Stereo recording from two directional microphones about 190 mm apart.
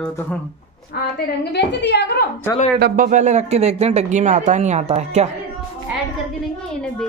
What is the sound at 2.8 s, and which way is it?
Speech, 45° right (ahead or behind).